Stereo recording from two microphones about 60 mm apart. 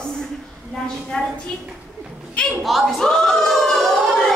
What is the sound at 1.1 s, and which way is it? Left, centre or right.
Speech, centre.